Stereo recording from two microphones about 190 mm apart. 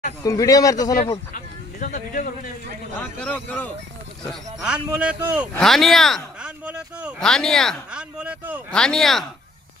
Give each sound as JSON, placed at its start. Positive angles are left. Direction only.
{"t": 0.2, "sound": "speech", "side_deg": 15}
{"t": 0.9, "sound": "a sound", "side_deg": 40}
{"t": 3.0, "sound": "speech", "side_deg": 10}
{"t": 4.3, "sound": "speech", "side_deg": -5}
{"t": 8.7, "sound": "speech", "side_deg": 5}